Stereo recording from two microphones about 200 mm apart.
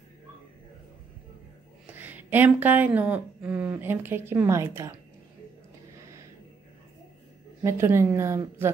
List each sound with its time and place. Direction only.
2.0 s speech: 10° right (ahead or behind)
7.6 s speech: 10° right (ahead or behind)